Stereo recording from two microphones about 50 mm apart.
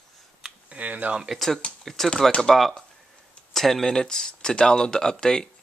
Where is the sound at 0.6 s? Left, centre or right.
Right.